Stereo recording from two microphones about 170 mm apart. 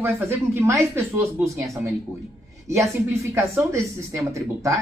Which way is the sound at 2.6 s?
15° right (ahead or behind).